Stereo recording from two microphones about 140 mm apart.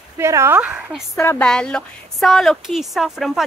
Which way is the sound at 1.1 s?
20° left (ahead or behind).